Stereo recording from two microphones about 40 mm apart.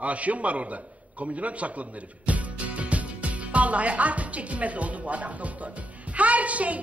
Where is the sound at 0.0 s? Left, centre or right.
Right.